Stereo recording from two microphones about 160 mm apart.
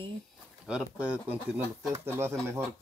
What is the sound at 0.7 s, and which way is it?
Speech, 5° right (ahead or behind).